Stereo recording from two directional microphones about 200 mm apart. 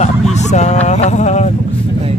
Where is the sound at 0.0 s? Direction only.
35° left (ahead or behind).